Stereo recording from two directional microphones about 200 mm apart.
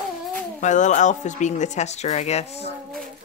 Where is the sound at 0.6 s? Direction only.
35° left (ahead or behind).